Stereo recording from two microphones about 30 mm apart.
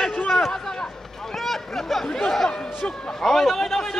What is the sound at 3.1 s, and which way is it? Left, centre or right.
Speech, centre.